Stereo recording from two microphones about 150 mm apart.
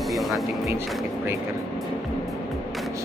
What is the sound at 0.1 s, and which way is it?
Music, centre (ahead or behind).